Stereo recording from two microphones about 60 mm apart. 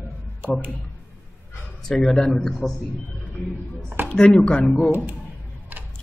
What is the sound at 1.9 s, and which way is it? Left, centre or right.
Speech, centre.